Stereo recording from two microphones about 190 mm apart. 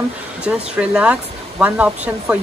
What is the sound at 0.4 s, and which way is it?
Speech, 5° right (ahead or behind).